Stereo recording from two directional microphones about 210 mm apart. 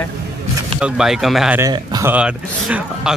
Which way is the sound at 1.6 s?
15° right (ahead or behind).